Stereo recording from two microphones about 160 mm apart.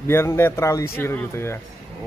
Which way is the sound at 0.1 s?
15° left (ahead or behind).